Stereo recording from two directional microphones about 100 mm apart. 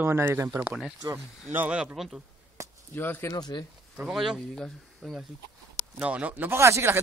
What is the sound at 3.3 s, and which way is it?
Speech, 45° left (ahead or behind).